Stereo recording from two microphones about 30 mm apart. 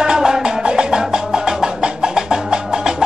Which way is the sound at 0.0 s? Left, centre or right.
Right.